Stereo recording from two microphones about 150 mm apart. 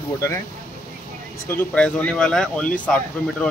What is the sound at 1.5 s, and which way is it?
Speech, 15° left (ahead or behind).